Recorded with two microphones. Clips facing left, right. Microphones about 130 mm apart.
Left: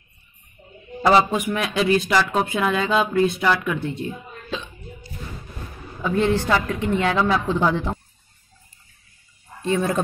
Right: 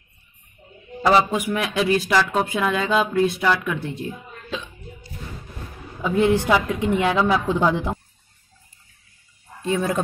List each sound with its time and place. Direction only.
1.0 s speech: 5° right (ahead or behind)
6.0 s speech: 15° right (ahead or behind)
9.6 s speech: 5° right (ahead or behind)